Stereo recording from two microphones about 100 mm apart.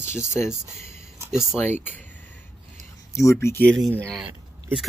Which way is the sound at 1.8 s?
20° left (ahead or behind).